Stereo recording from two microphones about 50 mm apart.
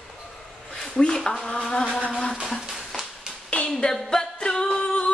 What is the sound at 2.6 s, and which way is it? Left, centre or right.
Music, centre.